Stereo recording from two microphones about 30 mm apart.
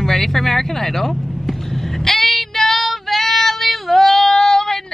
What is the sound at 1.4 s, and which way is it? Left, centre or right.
Child singing, centre.